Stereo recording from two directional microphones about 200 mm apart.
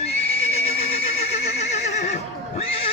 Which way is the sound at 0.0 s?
30° left (ahead or behind).